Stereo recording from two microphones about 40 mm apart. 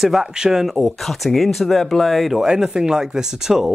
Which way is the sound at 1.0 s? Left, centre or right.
Centre.